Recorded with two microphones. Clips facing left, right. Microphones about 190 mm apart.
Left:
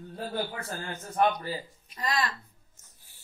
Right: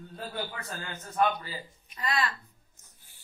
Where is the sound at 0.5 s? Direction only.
40° left (ahead or behind).